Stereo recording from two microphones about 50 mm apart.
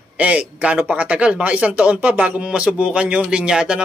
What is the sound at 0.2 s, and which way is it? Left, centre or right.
A man's voice, right.